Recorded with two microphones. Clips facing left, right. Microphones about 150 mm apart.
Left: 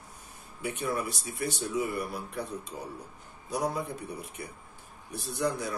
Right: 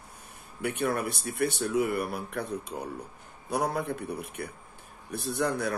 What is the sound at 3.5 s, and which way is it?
Speech, 60° right (ahead or behind).